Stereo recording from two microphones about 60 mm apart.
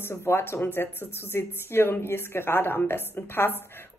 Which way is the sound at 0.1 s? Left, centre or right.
Left.